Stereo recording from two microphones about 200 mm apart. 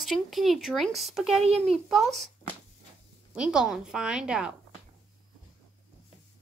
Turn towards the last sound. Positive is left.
turn(degrees=-5)  # may be behind; listen again after turning